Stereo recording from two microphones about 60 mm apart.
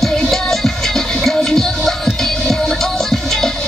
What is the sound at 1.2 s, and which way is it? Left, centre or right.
Music, centre.